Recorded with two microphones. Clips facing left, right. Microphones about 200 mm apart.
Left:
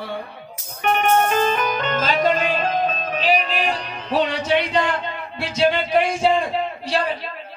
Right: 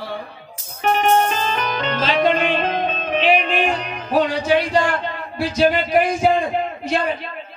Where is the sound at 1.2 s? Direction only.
50° left (ahead or behind); by 4.6 s 30° left (ahead or behind).